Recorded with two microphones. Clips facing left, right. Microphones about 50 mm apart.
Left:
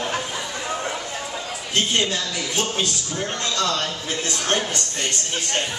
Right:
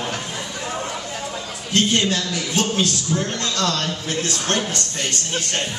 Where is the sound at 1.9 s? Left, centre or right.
Centre.